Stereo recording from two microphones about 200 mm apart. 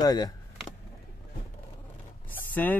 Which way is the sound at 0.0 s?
20° left (ahead or behind).